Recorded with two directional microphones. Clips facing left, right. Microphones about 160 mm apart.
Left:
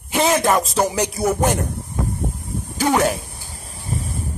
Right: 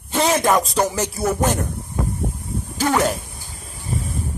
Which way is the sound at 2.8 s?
10° left (ahead or behind).